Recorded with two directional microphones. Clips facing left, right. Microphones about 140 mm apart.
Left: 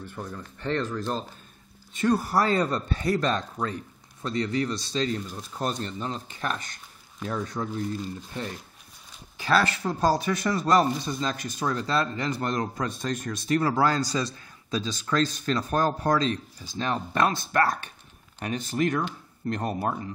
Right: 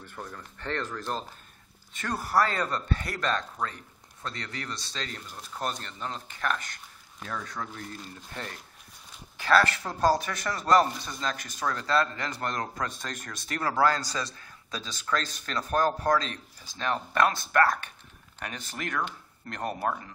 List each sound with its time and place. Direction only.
0.1 s speech: 20° left (ahead or behind)